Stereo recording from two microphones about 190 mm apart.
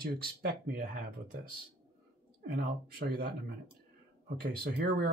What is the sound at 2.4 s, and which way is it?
Speech, 55° right (ahead or behind).